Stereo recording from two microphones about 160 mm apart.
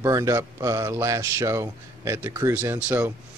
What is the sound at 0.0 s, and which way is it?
Speech, 20° right (ahead or behind).